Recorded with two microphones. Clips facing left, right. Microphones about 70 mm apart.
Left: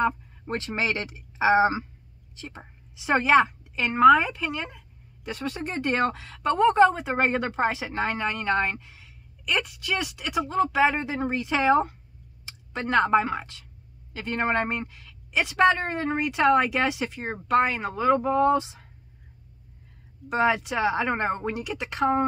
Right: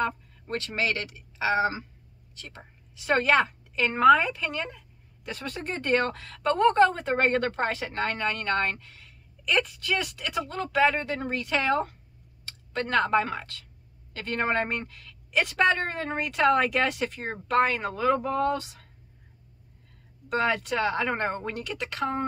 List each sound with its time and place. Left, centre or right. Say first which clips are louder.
0.0 s a woman's voice: left 4 dB; left
20.2 s a woman's voice: left 3 dB; centre